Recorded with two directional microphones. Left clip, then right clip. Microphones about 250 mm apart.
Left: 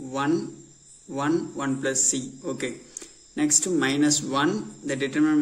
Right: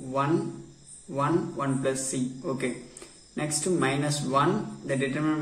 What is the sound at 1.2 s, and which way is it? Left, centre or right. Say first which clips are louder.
A man's voice: left 1 dB; left.